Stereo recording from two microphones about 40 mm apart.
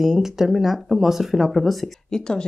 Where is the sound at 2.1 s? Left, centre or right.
Centre.